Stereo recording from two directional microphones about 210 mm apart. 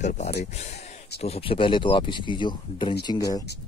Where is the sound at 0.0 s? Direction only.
35° left (ahead or behind).